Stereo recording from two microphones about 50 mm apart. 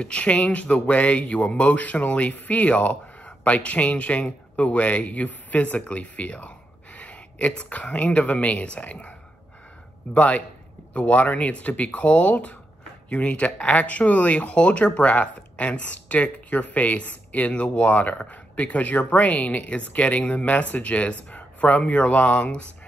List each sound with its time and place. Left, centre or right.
0.0 s speech: left
10.1 s speech: left